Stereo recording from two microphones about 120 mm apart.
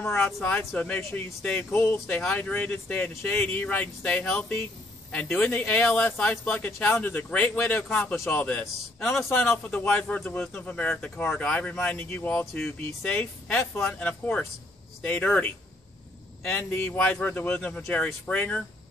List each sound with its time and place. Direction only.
0.0 s speech: 20° left (ahead or behind)